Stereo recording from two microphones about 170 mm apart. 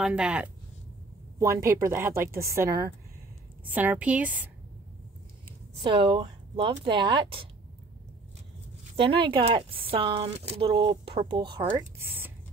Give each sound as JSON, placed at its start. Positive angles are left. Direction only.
{"t": 0.0, "sound": "speech", "side_deg": -5}
{"t": 1.4, "sound": "speech", "side_deg": -15}
{"t": 6.0, "sound": "speech", "side_deg": -30}
{"t": 8.9, "sound": "speech", "side_deg": -30}